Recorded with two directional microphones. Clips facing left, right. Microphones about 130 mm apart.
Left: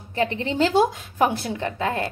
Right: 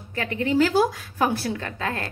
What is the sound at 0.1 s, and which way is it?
A woman's voice, 25° left (ahead or behind).